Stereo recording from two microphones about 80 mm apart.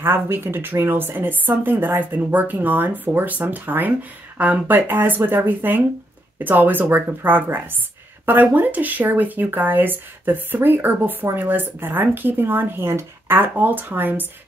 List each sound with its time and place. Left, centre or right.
0.0 s speech: right